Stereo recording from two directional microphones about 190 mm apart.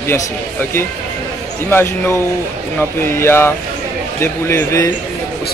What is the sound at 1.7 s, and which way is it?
A man's voice, 10° left (ahead or behind).